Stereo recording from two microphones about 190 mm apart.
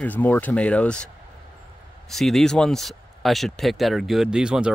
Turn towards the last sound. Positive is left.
turn(degrees=-5)  # may be behind; listen again after turning